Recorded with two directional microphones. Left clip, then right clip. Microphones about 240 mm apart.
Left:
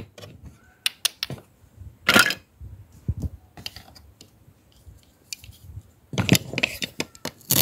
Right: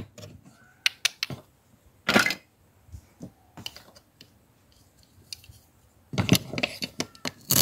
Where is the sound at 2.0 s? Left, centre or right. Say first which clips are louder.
Left 5 dB; left.